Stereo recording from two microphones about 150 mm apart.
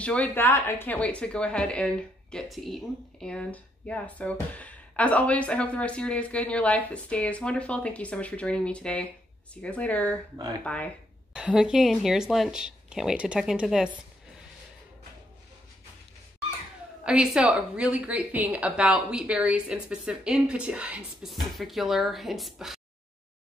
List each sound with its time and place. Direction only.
0.0 s speech: 10° left (ahead or behind)
11.3 s a woman's voice: 5° right (ahead or behind)
17.0 s a woman's voice: 5° right (ahead or behind)